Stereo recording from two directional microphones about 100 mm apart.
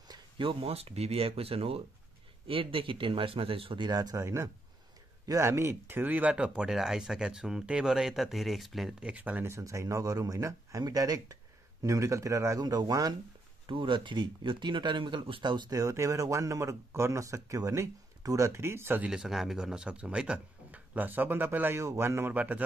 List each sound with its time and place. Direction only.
0.4 s speech: 65° right (ahead or behind)
2.4 s speech: 60° right (ahead or behind)
3.9 s speech: 40° right (ahead or behind); by 9.1 s 5° right (ahead or behind)
9.1 s speech: 15° right (ahead or behind)
9.5 s speech: 30° right (ahead or behind)
13.7 s speech: 55° right (ahead or behind)
15.7 s speech: 30° right (ahead or behind)
19.0 s speech: 5° right (ahead or behind)